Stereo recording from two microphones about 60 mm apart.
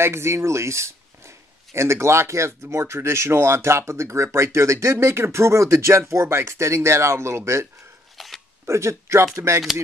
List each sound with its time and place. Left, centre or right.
0.0 s speech: right
8.2 s a sound: centre
8.6 s speech: right